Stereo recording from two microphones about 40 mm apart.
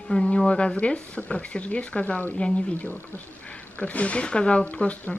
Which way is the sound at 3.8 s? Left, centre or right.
Left.